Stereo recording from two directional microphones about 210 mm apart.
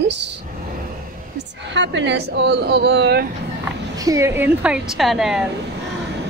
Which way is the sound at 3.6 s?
15° right (ahead or behind).